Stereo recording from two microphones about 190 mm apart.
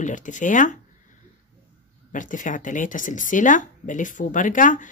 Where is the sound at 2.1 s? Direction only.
40° left (ahead or behind).